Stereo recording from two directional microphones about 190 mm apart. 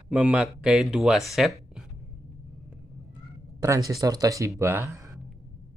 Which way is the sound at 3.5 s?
15° right (ahead or behind).